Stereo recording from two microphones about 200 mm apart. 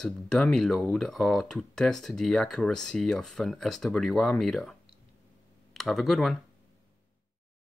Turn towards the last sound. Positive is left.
turn(degrees=0)  # may be behind; listen again after turning